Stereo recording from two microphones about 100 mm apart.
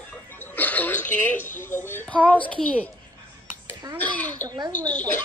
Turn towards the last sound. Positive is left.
turn(degrees=15)  # may be behind; listen again after turning